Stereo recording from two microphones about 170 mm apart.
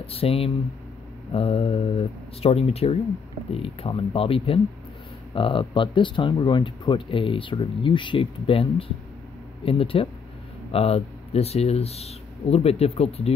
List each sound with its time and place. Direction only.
0.0 s speech: 35° left (ahead or behind)